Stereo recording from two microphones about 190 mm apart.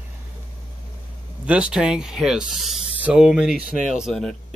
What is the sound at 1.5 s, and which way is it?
Speech, 5° right (ahead or behind).